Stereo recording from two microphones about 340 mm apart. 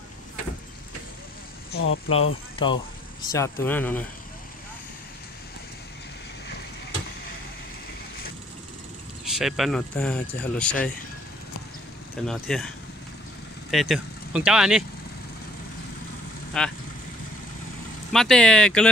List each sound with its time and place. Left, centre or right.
1.7 s speech: left
2.6 s speech: centre
9.2 s speech: centre
12.3 s speech: centre
16.5 s speech: centre
18.1 s speech: centre